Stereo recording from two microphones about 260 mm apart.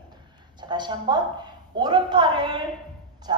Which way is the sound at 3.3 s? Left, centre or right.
Centre.